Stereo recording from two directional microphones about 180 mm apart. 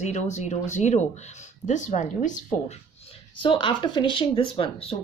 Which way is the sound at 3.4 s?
30° left (ahead or behind).